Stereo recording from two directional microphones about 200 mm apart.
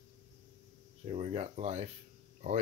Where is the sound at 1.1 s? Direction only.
30° right (ahead or behind).